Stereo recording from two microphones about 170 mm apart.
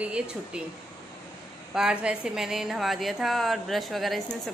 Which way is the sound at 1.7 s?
5° right (ahead or behind).